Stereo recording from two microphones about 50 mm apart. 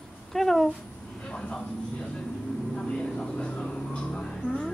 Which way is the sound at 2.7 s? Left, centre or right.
Centre.